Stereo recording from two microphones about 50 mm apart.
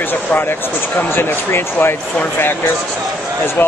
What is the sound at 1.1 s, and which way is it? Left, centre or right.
Speech, left.